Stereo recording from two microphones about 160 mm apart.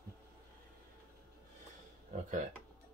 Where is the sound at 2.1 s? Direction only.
50° right (ahead or behind).